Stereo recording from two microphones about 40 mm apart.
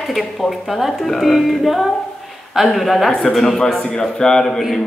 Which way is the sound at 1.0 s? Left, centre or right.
Centre.